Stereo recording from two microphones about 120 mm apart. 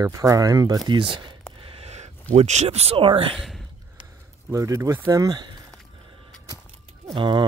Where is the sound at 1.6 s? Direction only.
55° right (ahead or behind).